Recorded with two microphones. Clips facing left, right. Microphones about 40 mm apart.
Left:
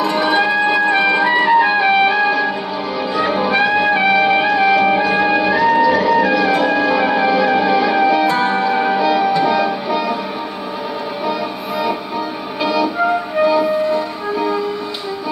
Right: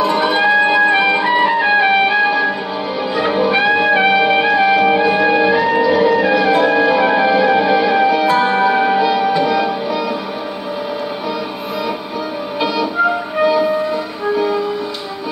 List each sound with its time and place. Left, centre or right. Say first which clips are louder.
0.0 s music: right 1 dB; centre
8.5 s music: right 2 dB; centre
9.8 s music: left 1 dB; centre
13.4 s music: right 1 dB; centre